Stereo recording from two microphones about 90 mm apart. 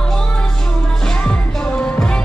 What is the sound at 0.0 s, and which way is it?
Music, 10° left (ahead or behind).